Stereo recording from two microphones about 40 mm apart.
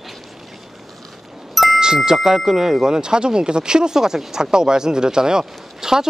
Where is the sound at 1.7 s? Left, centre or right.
Centre.